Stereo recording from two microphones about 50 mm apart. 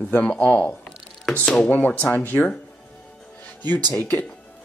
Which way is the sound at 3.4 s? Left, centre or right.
Left.